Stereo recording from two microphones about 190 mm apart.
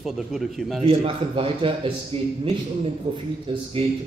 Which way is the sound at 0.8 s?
30° right (ahead or behind).